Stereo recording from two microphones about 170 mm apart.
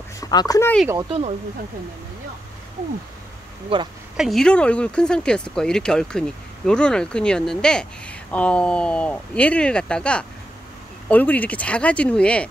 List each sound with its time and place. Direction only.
0.2 s speech: 20° left (ahead or behind)
3.7 s speech: 30° right (ahead or behind)
4.2 s speech: centre (ahead or behind)